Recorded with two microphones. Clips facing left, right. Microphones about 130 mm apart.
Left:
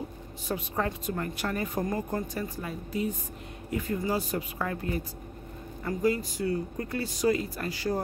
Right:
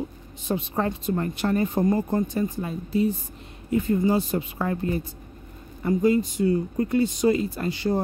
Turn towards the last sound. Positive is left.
turn(degrees=-25)  # may be behind; listen again after turning